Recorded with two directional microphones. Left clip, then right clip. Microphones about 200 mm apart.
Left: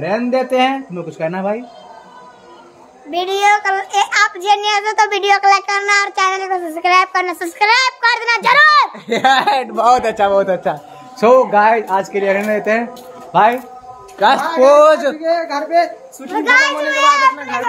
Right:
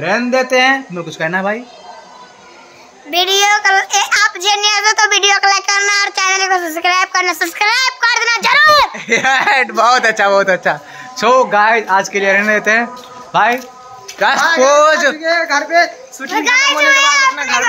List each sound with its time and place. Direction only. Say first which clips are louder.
0.0 s a man's voice: right 3 dB; 5° right (ahead or behind)
3.1 s a child's voice: right 2 dB; 10° left (ahead or behind)
8.9 s a man's voice: even; 10° right (ahead or behind)
11.1 s a man's voice: even; 10° left (ahead or behind)
16.4 s a child's voice: right 2 dB; 30° left (ahead or behind)